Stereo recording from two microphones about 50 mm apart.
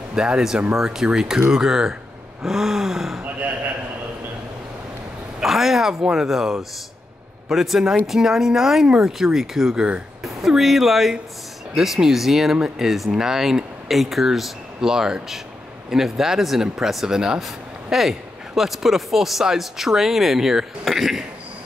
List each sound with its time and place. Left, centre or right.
0.1 s speech: centre
5.4 s speech: centre
12.5 s speech: centre
12.8 s speech: centre